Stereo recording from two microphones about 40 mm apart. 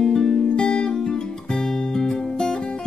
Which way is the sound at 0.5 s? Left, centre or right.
Left.